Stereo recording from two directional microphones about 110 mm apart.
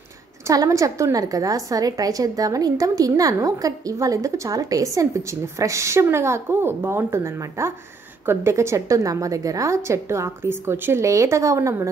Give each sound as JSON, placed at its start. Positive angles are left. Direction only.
{"t": 0.5, "sound": "a woman's voice", "side_deg": -30}